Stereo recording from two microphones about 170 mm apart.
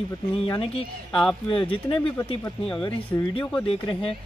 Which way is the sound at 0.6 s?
35° left (ahead or behind).